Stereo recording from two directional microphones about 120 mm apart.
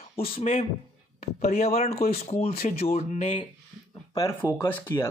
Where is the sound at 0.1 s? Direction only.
55° left (ahead or behind); by 3.3 s 75° left (ahead or behind).